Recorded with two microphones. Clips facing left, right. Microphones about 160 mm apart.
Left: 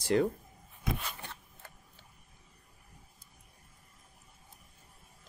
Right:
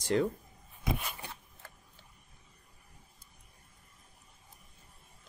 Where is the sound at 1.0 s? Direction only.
10° right (ahead or behind).